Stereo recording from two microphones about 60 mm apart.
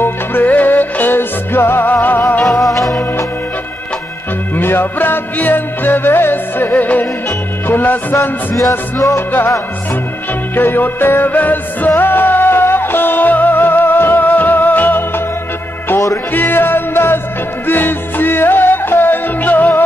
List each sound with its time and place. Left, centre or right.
0.0 s music: left
2.4 s music: centre
4.6 s music: left
8.2 s music: left
10.5 s music: left
16.3 s music: left